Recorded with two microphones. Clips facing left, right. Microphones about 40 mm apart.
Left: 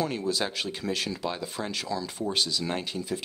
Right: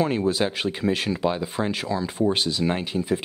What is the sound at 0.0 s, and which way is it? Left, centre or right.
Speech, right.